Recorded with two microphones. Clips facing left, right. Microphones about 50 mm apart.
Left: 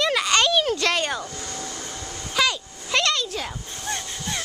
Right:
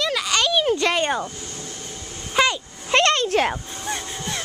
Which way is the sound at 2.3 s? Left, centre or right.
Right.